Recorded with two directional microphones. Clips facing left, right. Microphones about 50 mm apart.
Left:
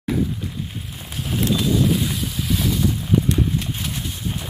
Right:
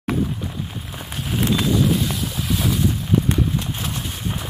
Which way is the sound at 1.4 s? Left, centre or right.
Right.